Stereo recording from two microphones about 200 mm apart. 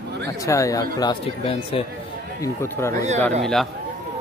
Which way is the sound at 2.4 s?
15° left (ahead or behind).